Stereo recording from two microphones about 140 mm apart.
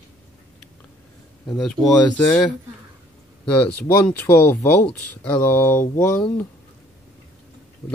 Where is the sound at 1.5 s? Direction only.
Centre (ahead or behind).